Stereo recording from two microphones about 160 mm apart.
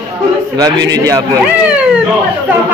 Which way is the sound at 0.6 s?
20° right (ahead or behind).